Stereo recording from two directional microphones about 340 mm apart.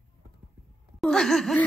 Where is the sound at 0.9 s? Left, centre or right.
Centre.